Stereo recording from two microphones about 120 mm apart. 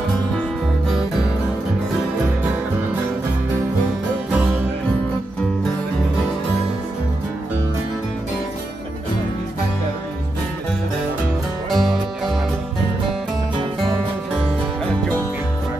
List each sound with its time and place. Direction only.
11.7 s music: centre (ahead or behind)